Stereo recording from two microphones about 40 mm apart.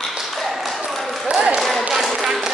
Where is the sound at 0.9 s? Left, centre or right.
Centre.